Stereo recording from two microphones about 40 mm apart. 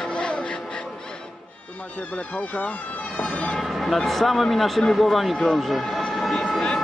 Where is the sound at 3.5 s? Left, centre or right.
Centre.